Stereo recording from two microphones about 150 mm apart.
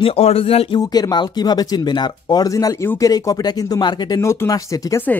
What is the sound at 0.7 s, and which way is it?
Speech, 25° left (ahead or behind).